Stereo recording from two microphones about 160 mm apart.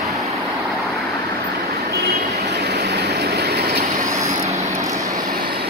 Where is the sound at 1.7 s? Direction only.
75° right (ahead or behind).